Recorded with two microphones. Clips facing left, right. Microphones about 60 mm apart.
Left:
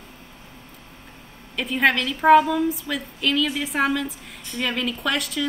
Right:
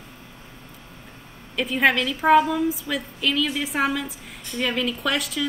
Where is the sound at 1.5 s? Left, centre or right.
Centre.